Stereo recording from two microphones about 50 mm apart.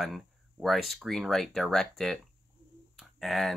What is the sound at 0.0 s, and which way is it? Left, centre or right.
Speech, centre.